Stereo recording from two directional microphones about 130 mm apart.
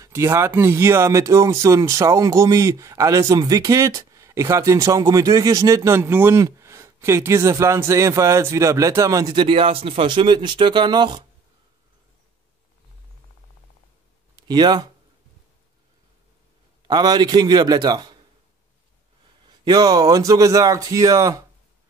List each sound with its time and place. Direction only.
0.0 s speech: 20° right (ahead or behind)
14.3 s speech: 35° right (ahead or behind)
16.8 s a man's voice: 30° right (ahead or behind)
19.6 s speech: 30° right (ahead or behind)